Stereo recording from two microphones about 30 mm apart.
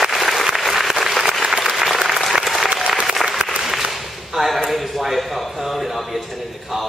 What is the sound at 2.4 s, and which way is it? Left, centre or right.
Applause, centre.